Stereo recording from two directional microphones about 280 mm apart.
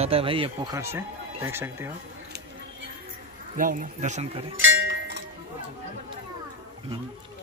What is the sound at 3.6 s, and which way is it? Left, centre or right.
Speech, right.